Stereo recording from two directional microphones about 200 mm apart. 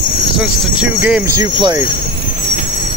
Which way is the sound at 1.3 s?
20° right (ahead or behind).